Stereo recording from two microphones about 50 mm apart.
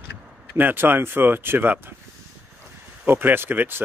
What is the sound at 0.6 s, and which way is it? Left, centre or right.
Speech, right.